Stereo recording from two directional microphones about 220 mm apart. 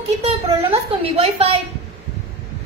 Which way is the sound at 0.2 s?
30° right (ahead or behind).